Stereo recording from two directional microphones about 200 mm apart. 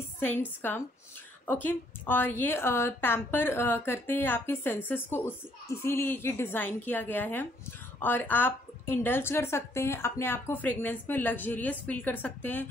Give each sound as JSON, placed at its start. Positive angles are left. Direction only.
{"t": 0.2, "sound": "a woman's voice", "side_deg": 10}